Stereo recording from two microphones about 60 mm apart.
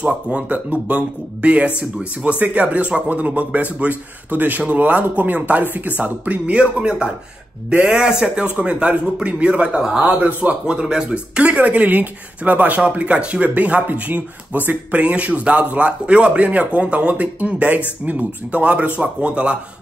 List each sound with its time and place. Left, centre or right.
0.0 s speech: right